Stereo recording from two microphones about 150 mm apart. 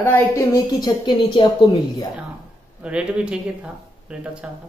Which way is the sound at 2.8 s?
5° right (ahead or behind).